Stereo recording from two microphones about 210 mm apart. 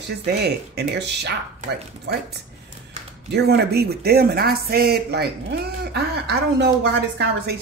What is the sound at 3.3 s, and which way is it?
Speech, 50° right (ahead or behind).